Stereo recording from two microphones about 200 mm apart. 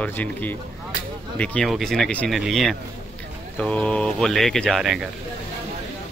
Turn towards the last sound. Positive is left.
turn(degrees=0)  # may be behind; listen again after turning